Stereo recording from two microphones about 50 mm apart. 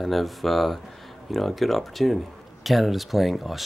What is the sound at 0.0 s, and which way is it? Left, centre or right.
Speech, centre.